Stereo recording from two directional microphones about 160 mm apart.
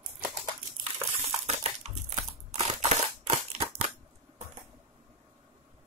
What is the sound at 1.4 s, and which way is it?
Crushing, 40° right (ahead or behind).